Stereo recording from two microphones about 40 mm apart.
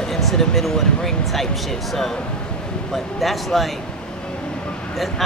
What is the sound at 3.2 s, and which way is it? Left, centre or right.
Speech, centre.